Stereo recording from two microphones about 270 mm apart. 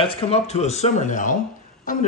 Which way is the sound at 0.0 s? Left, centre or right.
Centre.